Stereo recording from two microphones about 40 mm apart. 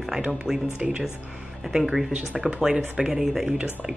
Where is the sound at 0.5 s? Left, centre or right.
Centre.